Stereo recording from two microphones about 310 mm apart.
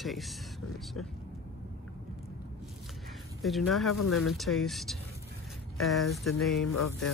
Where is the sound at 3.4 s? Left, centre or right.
Centre.